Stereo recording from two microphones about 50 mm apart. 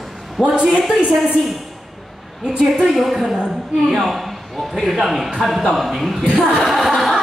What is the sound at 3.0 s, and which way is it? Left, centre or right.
A woman's voice, centre.